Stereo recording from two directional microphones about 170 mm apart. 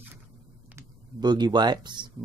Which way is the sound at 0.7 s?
25° right (ahead or behind).